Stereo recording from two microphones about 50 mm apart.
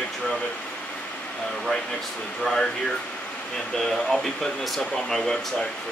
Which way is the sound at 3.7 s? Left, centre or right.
Centre.